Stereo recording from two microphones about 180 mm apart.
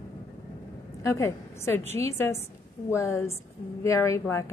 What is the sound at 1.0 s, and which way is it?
A woman's voice, 15° left (ahead or behind).